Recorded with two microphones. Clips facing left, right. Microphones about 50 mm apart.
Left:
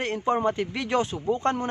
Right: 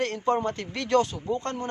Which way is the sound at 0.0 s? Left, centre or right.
Centre.